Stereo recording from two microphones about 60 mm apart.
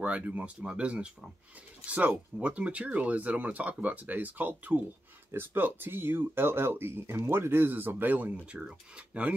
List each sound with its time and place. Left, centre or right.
0.0 s speech: right
8.5 s speech: centre